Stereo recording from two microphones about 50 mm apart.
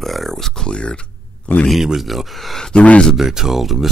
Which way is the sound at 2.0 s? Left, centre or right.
Centre.